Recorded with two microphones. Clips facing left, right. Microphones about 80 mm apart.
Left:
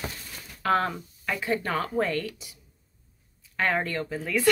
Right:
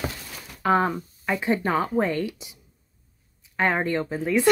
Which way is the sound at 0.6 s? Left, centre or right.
Centre.